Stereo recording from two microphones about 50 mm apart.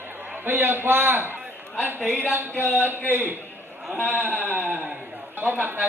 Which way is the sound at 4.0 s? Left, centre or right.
Left.